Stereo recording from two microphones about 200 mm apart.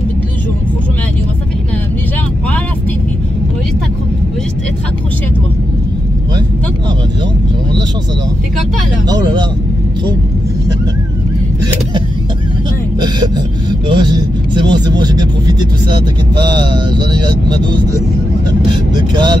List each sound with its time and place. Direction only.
9.1 s speech: 20° right (ahead or behind)
13.8 s speech: 20° right (ahead or behind)
18.7 s speech: 20° right (ahead or behind)